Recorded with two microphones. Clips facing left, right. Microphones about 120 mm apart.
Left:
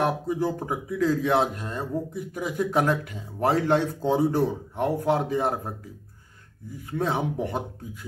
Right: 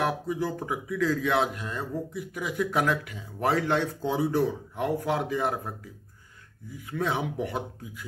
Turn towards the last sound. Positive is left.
turn(degrees=35)  # may be behind; listen again after turning